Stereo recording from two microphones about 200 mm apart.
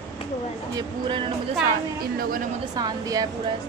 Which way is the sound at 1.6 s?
45° right (ahead or behind).